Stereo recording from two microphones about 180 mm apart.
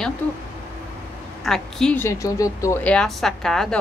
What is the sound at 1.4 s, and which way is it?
Speech, 5° left (ahead or behind).